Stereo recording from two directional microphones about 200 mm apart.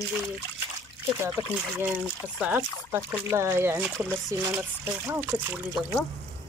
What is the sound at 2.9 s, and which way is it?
Speech, 10° right (ahead or behind).